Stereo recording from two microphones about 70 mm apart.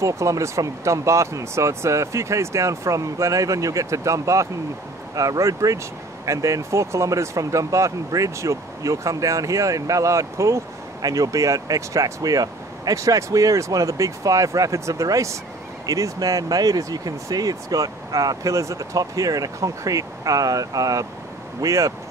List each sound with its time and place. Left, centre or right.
0.0 s speech: right
11.0 s speech: right